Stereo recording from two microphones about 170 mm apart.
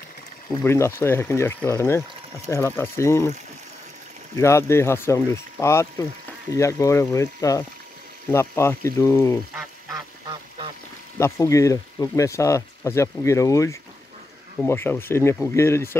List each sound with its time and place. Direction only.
0.5 s speech: 20° left (ahead or behind)
4.4 s speech: 15° left (ahead or behind)
9.6 s duck: 20° right (ahead or behind)
11.1 s speech: 15° left (ahead or behind)